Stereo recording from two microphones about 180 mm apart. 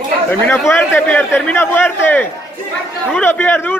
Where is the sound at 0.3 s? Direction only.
10° left (ahead or behind).